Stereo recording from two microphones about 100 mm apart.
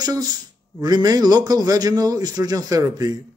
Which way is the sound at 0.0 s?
40° right (ahead or behind).